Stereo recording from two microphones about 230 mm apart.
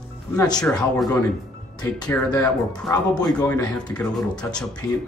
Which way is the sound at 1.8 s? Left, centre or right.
Centre.